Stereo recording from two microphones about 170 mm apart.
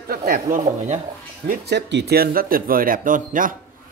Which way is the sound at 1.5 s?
75° right (ahead or behind).